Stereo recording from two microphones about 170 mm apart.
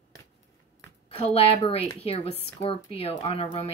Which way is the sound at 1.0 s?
30° left (ahead or behind).